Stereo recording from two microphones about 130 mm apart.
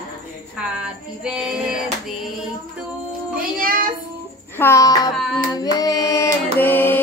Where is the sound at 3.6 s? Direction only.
90° right.